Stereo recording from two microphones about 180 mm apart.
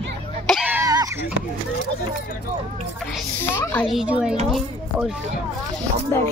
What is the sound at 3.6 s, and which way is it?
Speech, 15° left (ahead or behind).